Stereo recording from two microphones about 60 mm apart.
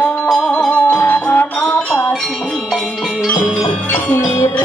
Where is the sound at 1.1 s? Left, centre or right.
Left.